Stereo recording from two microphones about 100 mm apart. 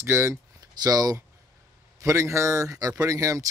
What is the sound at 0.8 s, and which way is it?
Speech, 40° right (ahead or behind).